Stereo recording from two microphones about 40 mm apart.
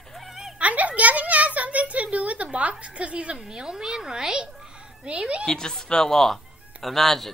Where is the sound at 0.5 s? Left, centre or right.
Right.